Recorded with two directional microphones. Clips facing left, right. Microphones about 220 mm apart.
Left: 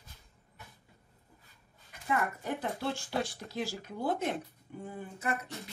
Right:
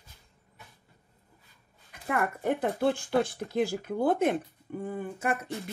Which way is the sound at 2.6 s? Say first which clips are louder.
Right 8 dB; 55° right (ahead or behind).